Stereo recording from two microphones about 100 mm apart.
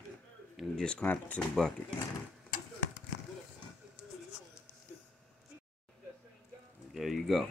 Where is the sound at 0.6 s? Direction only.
10° left (ahead or behind).